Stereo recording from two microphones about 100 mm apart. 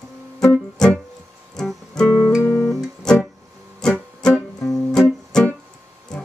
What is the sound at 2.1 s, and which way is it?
Music, 20° left (ahead or behind).